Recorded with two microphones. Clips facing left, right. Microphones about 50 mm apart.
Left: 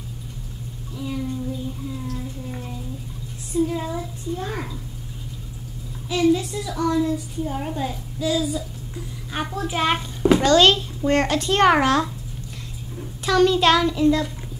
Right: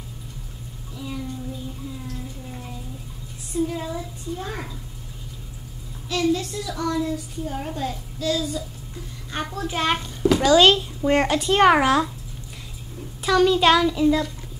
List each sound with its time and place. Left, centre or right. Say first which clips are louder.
0.9 s a sound: left 4 dB; centre
3.5 s a child's voice: left 2 dB; centre
6.0 s a child's voice: left 3 dB; centre
10.4 s a child's voice: right 3 dB; centre
13.2 s a child's voice: even; centre